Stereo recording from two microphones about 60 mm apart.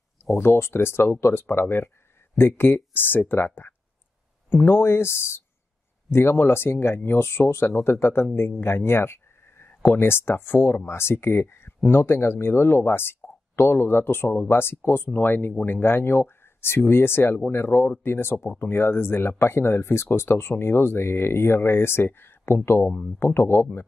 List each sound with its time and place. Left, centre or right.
0.4 s speech: left